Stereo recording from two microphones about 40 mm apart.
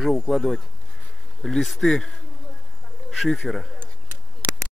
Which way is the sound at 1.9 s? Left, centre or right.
Centre.